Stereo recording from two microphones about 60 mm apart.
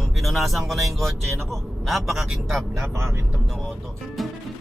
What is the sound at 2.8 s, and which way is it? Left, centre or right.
Speech, right.